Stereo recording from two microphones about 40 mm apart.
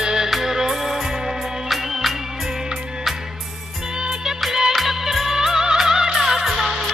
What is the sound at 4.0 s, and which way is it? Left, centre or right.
Music, centre.